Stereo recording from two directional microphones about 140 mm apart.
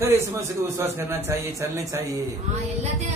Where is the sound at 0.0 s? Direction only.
20° right (ahead or behind).